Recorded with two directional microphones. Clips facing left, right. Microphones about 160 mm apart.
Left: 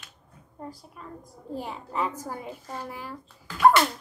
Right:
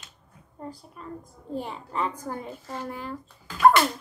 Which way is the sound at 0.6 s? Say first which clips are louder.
Right 1 dB; centre (ahead or behind).